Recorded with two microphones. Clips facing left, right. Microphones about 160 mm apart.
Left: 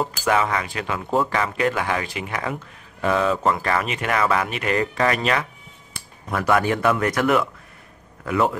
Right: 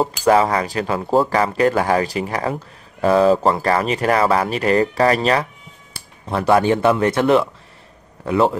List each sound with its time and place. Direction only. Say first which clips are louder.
0.0 s speech: right 6 dB; 35° right (ahead or behind)